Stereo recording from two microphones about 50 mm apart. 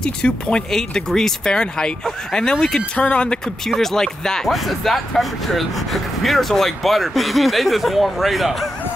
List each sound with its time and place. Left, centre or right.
0.0 s speech: centre
3.6 s speech: centre